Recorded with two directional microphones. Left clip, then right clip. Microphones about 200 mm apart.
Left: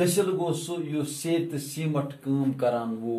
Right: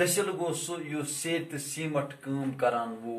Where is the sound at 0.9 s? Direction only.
Centre (ahead or behind).